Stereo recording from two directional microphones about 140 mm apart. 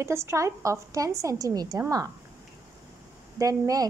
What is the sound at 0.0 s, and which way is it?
A woman's voice, 20° right (ahead or behind).